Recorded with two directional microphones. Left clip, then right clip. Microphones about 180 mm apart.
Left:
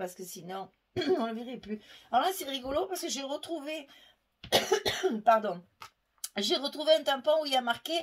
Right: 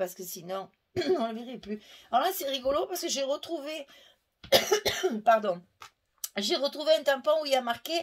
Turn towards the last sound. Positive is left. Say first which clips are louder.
# right 1 dB
turn(degrees=-45)  # may be behind; listen again after turning